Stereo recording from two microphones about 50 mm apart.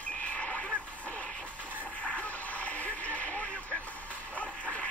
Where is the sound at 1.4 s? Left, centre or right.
Right.